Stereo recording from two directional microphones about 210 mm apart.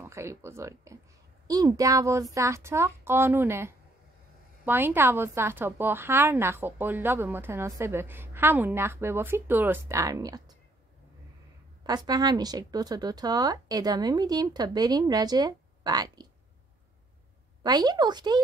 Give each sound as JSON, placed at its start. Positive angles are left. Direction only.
{"t": 0.0, "sound": "a woman's voice", "side_deg": -15}
{"t": 11.8, "sound": "speech", "side_deg": -20}
{"t": 17.6, "sound": "speech", "side_deg": -20}